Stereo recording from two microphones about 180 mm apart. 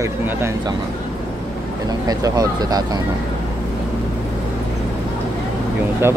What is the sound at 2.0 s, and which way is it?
Speech, 20° right (ahead or behind).